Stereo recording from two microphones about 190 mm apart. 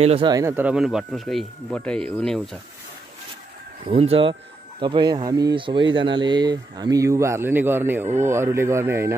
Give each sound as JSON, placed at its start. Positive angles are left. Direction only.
{"t": 0.0, "sound": "speech", "side_deg": -30}
{"t": 0.3, "sound": "speech", "side_deg": -15}
{"t": 3.8, "sound": "speech", "side_deg": -30}